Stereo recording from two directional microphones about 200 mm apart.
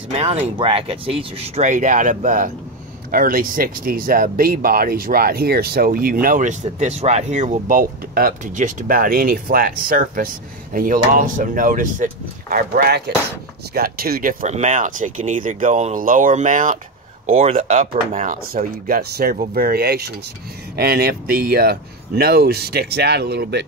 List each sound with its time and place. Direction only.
0.1 s speech: 30° right (ahead or behind)
6.8 s speech: 35° right (ahead or behind)
17.3 s speech: 30° right (ahead or behind); by 23.6 s 55° right (ahead or behind)